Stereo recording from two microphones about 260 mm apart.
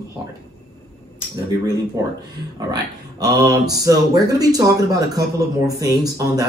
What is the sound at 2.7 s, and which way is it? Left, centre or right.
Speech, centre.